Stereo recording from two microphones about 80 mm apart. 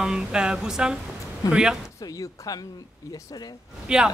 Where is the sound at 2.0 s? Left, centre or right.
Left.